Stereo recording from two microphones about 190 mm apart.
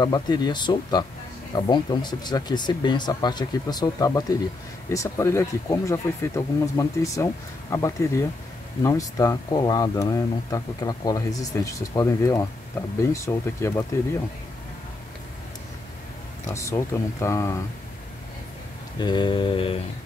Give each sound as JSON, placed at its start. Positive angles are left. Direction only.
{"t": 0.0, "sound": "speech", "side_deg": 20}
{"t": 16.4, "sound": "speech", "side_deg": 15}
{"t": 18.9, "sound": "speech", "side_deg": 25}